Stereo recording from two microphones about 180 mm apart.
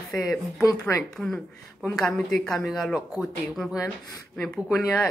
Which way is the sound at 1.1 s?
5° left (ahead or behind).